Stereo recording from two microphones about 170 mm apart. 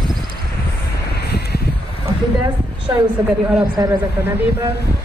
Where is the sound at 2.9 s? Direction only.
20° right (ahead or behind).